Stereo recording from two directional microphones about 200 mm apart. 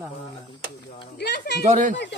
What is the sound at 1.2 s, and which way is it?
Speech, 60° left (ahead or behind).